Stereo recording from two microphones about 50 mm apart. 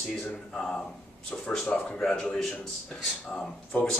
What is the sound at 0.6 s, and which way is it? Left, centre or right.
A man's voice, centre.